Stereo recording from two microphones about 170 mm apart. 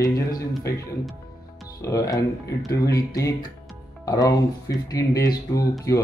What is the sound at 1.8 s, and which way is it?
Speech, 20° left (ahead or behind).